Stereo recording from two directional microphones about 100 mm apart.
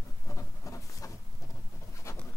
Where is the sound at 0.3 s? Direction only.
30° left (ahead or behind).